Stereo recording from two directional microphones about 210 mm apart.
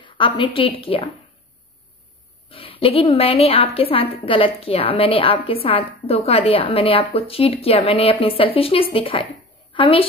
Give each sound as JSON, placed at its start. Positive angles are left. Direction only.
{"t": 0.0, "sound": "a woman's voice", "side_deg": 25}
{"t": 2.5, "sound": "a woman's voice", "side_deg": 25}